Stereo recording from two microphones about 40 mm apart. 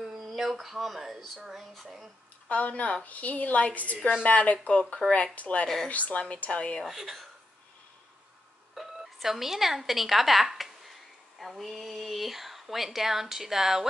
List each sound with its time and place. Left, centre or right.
0.4 s speech: centre
2.4 s a woman's voice: left
6.8 s speech: centre
8.7 s speech: centre